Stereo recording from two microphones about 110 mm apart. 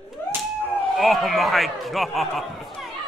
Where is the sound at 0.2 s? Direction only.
20° left (ahead or behind).